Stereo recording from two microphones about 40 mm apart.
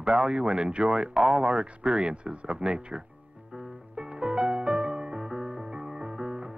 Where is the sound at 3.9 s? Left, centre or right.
Right.